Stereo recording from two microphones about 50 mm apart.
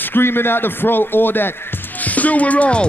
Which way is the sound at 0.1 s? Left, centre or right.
Left.